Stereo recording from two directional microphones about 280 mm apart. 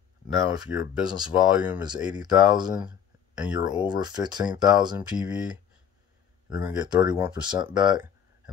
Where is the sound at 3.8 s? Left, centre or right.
Centre.